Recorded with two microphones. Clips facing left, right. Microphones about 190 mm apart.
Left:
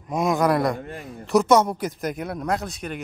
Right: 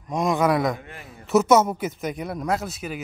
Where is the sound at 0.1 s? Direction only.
Centre (ahead or behind).